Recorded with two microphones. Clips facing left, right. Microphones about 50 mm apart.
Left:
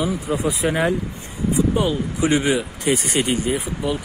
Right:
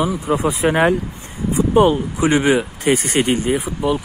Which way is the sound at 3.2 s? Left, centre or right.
Right.